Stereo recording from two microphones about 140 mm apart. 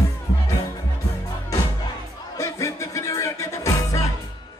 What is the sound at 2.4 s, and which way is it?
Music, 20° left (ahead or behind).